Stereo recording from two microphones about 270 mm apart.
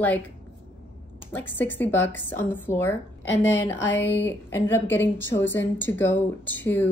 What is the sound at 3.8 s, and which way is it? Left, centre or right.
Speech, left.